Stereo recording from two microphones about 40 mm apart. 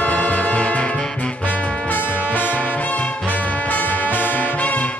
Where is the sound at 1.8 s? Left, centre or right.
Left.